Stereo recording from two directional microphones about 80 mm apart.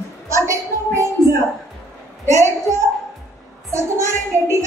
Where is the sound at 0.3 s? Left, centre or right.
Right.